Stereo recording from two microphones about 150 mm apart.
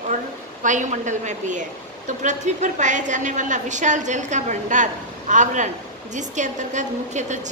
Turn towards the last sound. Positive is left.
turn(degrees=-55)  # may be behind; listen again after turning